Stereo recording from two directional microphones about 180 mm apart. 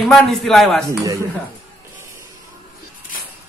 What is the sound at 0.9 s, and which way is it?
Speech, 15° right (ahead or behind).